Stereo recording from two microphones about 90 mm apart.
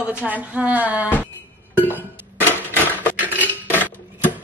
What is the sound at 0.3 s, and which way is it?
Speech, 15° right (ahead or behind).